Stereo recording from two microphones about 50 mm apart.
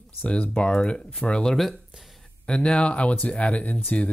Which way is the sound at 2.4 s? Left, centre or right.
Centre.